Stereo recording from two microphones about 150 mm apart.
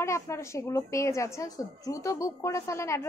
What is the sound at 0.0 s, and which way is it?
A woman's voice, 20° left (ahead or behind).